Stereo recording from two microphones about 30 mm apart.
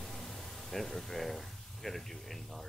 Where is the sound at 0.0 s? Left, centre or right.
Centre.